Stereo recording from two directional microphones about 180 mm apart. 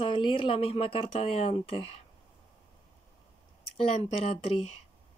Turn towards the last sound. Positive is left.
turn(degrees=35)  # may be behind; listen again after turning